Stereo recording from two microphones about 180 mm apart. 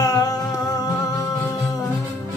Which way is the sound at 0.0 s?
20° left (ahead or behind).